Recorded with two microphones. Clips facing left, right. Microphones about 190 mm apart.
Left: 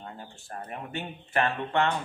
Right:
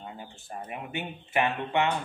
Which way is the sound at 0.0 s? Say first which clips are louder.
Right 1 dB; 10° right (ahead or behind).